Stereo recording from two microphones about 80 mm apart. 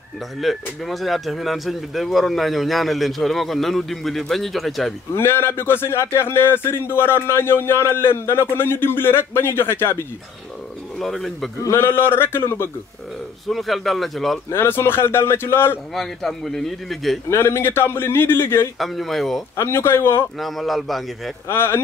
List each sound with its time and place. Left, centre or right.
0.4 s speech: centre
5.1 s a man's voice: left
11.0 s speech: centre
11.7 s a man's voice: left
13.5 s speech: centre
14.5 s a man's voice: left
15.9 s speech: centre
17.3 s a man's voice: left
18.8 s speech: centre
19.5 s a man's voice: left
20.3 s speech: centre
21.5 s a man's voice: left